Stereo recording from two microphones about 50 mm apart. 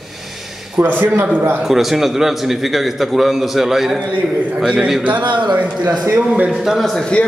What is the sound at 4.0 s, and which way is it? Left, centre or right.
Speech, right.